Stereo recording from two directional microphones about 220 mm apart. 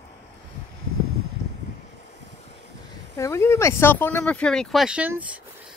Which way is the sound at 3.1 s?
15° left (ahead or behind).